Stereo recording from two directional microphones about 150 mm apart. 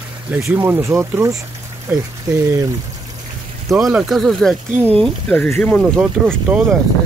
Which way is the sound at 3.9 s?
Centre (ahead or behind).